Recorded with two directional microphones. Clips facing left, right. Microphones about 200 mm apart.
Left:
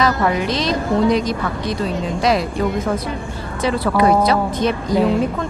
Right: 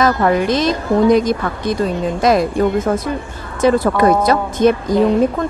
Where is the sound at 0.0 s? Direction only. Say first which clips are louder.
Right 3 dB; 50° right (ahead or behind).